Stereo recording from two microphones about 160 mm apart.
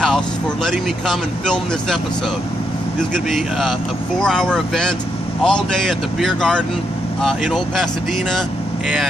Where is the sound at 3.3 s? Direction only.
Centre (ahead or behind).